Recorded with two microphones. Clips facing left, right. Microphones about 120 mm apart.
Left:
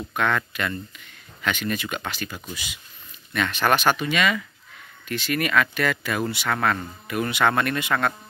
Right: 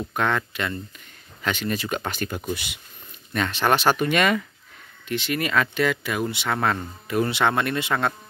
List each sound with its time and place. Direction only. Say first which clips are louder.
0.1 s speech: left 1 dB; 30° right (ahead or behind)
2.0 s speech: right 5 dB; 50° right (ahead or behind)
3.3 s speech: even; 30° right (ahead or behind)
3.9 s speech: right 3 dB; 50° right (ahead or behind)
5.0 s speech: even; 20° right (ahead or behind)